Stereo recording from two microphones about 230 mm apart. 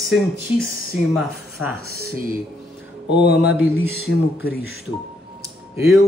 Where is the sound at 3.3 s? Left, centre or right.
Centre.